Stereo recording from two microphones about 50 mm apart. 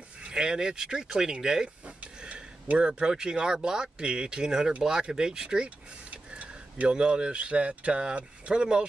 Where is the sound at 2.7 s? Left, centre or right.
Centre.